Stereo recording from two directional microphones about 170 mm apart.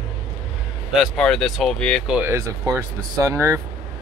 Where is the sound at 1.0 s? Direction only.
5° left (ahead or behind).